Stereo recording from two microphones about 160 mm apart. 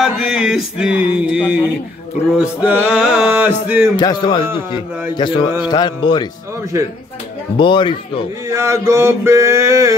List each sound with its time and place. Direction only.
0.0 s a sound: 5° right (ahead or behind)
2.3 s music: 10° right (ahead or behind)
3.9 s speech: 25° left (ahead or behind)
7.5 s a man's voice: 30° left (ahead or behind)
8.5 s music: 15° right (ahead or behind)